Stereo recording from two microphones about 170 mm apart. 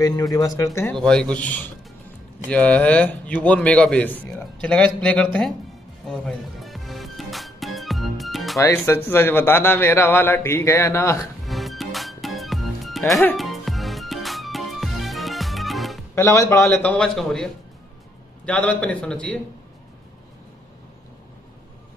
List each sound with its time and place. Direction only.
0.0 s speech: 20° left (ahead or behind)
0.9 s a man's voice: 5° left (ahead or behind)
6.0 s music: centre (ahead or behind)
8.5 s a man's voice: 15° left (ahead or behind)
11.4 s music: centre (ahead or behind)
16.2 s a man's voice: 15° left (ahead or behind)